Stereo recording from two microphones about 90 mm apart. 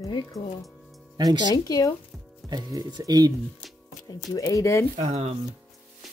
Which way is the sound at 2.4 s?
45° right (ahead or behind).